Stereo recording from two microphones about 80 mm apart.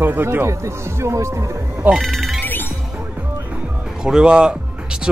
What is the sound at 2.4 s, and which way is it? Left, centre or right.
Music, left.